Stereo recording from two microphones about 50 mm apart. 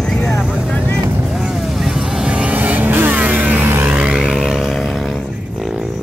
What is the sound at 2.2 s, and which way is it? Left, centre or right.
Vehicle, right.